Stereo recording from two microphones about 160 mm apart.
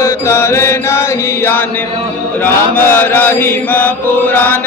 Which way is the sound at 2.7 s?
15° left (ahead or behind).